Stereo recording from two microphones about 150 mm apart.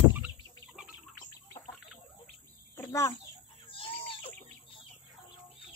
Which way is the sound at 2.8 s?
20° left (ahead or behind).